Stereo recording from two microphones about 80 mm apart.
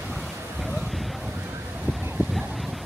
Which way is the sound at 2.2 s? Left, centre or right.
Right.